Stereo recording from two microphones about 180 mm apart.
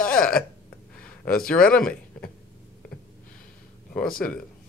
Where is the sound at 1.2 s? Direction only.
5° left (ahead or behind).